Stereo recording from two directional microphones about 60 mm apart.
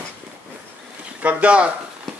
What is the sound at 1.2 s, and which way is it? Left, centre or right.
Speech, right.